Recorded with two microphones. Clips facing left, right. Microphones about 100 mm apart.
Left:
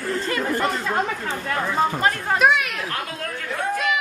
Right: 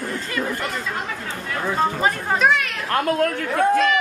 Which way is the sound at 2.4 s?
10° left (ahead or behind).